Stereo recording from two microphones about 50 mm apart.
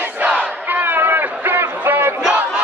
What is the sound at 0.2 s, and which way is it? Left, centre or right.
Crowd, right.